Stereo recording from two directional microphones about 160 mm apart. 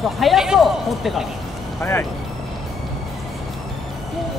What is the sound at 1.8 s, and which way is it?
Speech, 15° left (ahead or behind).